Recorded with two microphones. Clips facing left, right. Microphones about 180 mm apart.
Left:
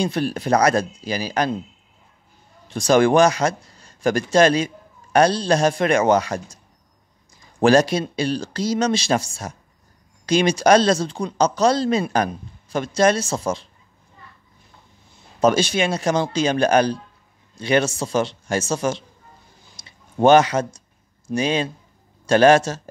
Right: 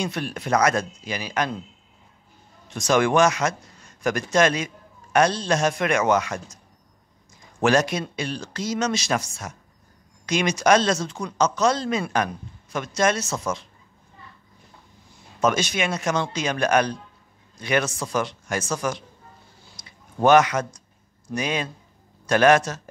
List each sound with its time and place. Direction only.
0.0 s a man's voice: 35° left (ahead or behind)
2.7 s a man's voice: 30° left (ahead or behind)
7.6 s a man's voice: 30° left (ahead or behind)
15.4 s a man's voice: 30° left (ahead or behind)
19.8 s tick-tock: 30° left (ahead or behind)
21.3 s a man's voice: 30° left (ahead or behind)